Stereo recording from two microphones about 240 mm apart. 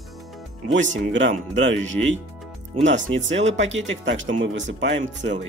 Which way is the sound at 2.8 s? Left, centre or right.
Right.